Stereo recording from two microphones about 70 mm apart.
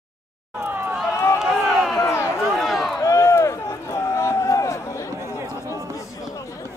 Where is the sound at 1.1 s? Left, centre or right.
Left.